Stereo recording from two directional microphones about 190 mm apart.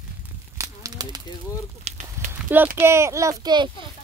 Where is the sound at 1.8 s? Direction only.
40° right (ahead or behind).